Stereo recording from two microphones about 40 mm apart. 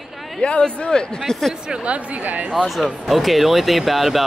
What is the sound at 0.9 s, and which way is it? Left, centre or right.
Speech, centre.